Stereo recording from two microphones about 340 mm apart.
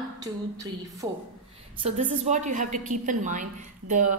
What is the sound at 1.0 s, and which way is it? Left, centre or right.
A woman's voice, centre.